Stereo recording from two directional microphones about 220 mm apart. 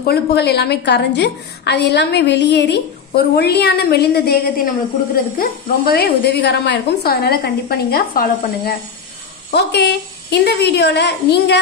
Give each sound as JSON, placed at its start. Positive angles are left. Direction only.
{"t": 0.0, "sound": "a woman's voice", "side_deg": 45}